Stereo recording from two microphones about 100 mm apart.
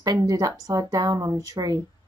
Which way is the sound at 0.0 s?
40° right (ahead or behind).